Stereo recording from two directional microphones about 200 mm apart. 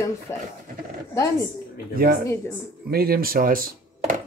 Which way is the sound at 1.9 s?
45° right (ahead or behind).